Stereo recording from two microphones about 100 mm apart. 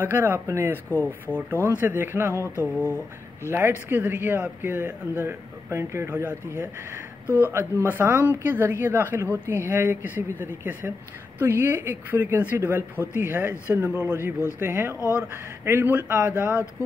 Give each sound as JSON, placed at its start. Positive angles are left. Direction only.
{"t": 0.0, "sound": "speech", "side_deg": -20}
{"t": 0.8, "sound": "speech", "side_deg": 20}
{"t": 1.5, "sound": "speech", "side_deg": -20}
{"t": 2.4, "sound": "speech", "side_deg": 25}
{"t": 3.4, "sound": "speech", "side_deg": -25}